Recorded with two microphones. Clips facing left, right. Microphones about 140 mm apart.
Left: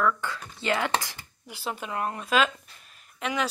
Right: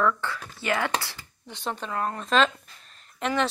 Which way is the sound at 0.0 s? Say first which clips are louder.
Right 1 dB; 15° left (ahead or behind).